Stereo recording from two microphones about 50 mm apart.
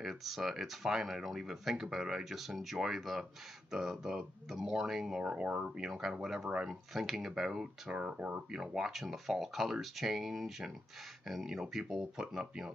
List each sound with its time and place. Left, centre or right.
0.0 s speech: centre
5.2 s speech: right
5.9 s speech: centre
8.0 s speech: right
8.5 s speech: centre